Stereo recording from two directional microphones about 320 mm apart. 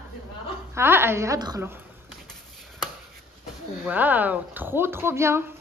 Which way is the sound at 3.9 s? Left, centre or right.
Centre.